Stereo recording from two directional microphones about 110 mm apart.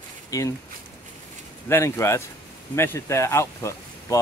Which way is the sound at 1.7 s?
25° left (ahead or behind).